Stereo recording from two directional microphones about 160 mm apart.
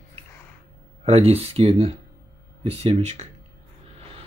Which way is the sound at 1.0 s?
40° right (ahead or behind).